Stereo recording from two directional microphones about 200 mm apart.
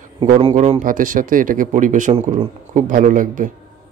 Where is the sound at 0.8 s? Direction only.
40° right (ahead or behind).